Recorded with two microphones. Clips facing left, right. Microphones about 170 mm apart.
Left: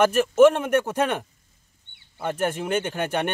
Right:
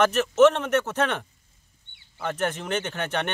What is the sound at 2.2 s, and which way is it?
Speech, 10° left (ahead or behind).